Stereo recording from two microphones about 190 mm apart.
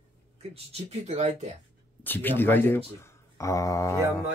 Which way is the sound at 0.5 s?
35° right (ahead or behind).